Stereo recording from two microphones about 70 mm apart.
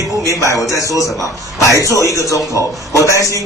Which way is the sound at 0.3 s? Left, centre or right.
Left.